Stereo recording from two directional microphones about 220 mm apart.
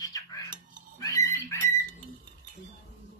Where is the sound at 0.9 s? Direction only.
15° left (ahead or behind).